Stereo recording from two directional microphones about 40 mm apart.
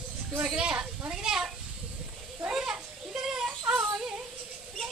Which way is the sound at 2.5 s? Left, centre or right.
Centre.